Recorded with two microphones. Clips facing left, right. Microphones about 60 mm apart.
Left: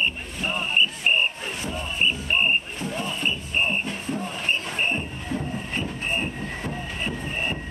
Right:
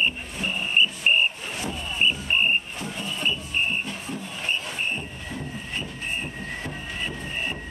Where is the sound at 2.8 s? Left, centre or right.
Left.